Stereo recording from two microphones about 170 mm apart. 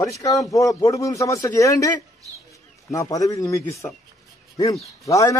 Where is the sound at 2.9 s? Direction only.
20° left (ahead or behind).